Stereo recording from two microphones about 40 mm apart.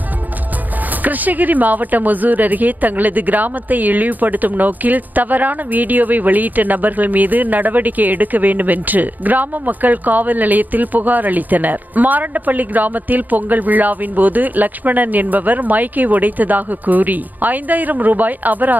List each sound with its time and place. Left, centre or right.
1.0 s speech: right